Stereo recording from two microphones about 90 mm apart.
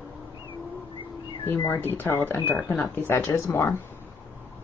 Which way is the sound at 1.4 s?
25° left (ahead or behind).